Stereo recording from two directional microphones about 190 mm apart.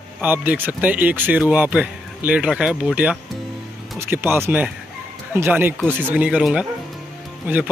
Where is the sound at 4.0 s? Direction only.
10° right (ahead or behind).